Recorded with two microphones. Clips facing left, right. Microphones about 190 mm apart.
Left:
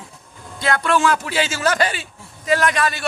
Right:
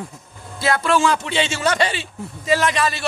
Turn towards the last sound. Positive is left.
turn(degrees=0)  # may be behind; listen again after turning